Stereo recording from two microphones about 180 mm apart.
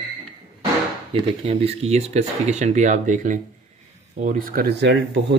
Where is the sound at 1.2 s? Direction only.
35° right (ahead or behind).